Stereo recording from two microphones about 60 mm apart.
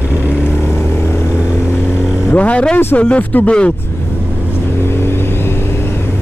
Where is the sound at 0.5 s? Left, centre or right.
Left.